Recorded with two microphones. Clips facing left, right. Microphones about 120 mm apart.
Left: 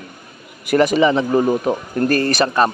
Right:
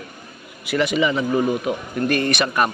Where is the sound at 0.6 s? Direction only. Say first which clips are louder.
Left 6 dB; 45° left (ahead or behind).